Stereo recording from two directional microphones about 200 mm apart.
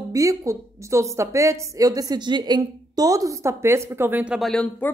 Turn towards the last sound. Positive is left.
turn(degrees=5)  # may be behind; listen again after turning